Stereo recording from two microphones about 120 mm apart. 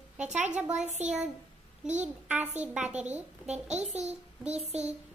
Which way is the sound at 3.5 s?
65° right (ahead or behind).